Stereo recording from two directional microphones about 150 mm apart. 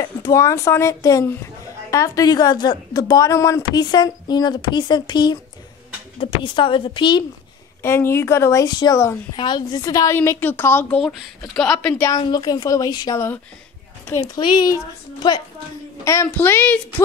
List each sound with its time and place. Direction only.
0.0 s a woman's voice: 20° left (ahead or behind)
7.8 s speech: 15° left (ahead or behind)
11.0 s speech: centre (ahead or behind)
12.0 s a woman's voice: 25° left (ahead or behind)